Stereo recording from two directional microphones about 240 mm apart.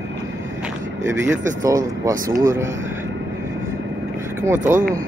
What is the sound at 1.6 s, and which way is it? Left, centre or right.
Speech, centre.